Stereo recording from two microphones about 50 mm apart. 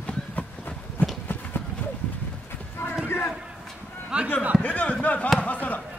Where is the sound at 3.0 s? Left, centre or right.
Left.